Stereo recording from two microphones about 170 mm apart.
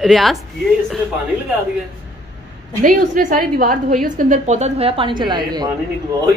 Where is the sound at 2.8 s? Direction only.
50° right (ahead or behind).